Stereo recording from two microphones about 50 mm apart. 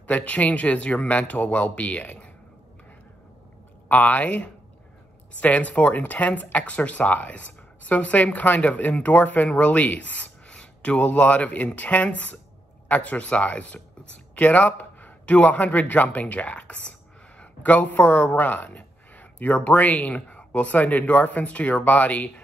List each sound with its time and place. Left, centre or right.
0.0 s speech: left
3.9 s speech: left